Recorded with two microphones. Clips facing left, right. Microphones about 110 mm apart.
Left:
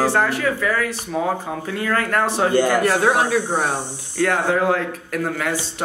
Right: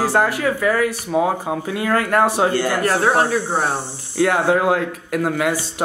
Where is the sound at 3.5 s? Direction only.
10° right (ahead or behind).